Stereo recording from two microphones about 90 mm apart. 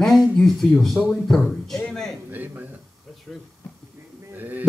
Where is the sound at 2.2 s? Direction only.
20° right (ahead or behind).